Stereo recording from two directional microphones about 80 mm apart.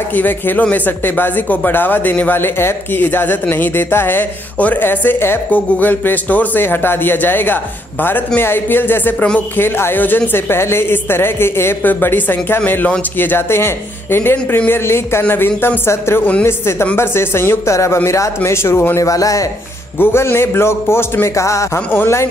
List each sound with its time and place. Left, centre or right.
0.1 s speech: left
19.0 s speech: left
20.0 s speech: left